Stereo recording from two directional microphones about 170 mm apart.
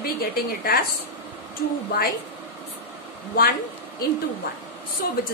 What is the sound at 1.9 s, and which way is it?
Speech, 65° left (ahead or behind).